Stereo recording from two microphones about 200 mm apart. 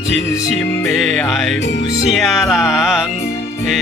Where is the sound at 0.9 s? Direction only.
Centre (ahead or behind).